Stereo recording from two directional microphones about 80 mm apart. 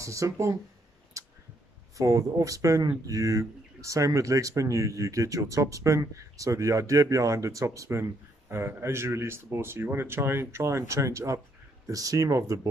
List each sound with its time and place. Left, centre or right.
0.0 s speech: right
1.1 s a sound: right
2.0 s speech: right